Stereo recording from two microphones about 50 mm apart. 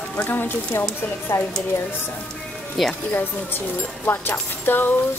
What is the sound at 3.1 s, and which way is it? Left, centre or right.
Speech, left.